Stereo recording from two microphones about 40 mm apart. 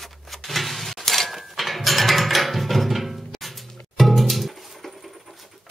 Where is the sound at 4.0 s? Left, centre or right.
Centre.